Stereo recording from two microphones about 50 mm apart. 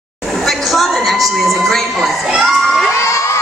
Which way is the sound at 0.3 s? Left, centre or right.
Centre.